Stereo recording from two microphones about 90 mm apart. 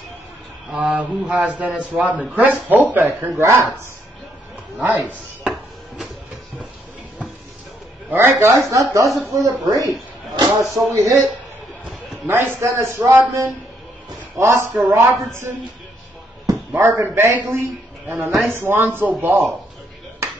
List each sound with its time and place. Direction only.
0.7 s a man's voice: 15° right (ahead or behind)
4.7 s speech: 15° right (ahead or behind)
8.1 s a man's voice: 30° right (ahead or behind)
10.6 s speech: centre (ahead or behind)
10.9 s a man's voice: 30° right (ahead or behind)
12.3 s speech: 25° right (ahead or behind)
14.3 s a man's voice: 30° right (ahead or behind)
16.7 s a man's voice: 25° right (ahead or behind)